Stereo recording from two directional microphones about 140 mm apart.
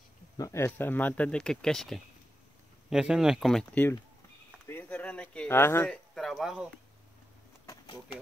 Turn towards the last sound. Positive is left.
turn(degrees=25)  # may be behind; listen again after turning